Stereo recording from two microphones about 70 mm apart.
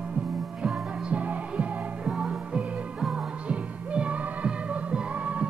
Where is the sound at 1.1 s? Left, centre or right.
Centre.